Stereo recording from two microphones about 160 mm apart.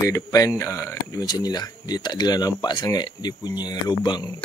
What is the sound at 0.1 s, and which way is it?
Speech, 20° left (ahead or behind).